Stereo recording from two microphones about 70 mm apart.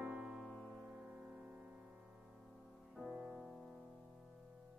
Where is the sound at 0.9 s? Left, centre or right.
Centre.